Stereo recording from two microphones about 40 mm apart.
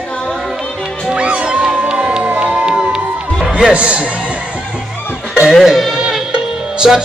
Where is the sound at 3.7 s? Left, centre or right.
Right.